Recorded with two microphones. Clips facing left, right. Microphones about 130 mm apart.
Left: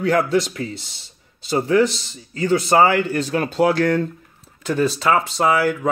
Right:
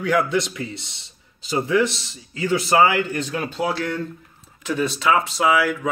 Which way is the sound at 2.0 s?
40° left (ahead or behind).